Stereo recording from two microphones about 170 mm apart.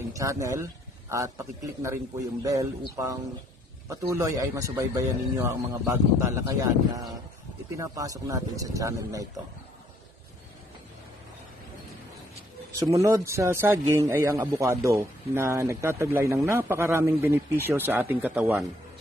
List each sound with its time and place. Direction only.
0.1 s a man's voice: 20° right (ahead or behind)
12.9 s a man's voice: 20° right (ahead or behind)